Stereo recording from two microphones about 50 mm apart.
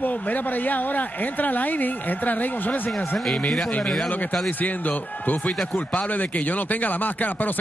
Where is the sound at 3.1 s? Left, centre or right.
Centre.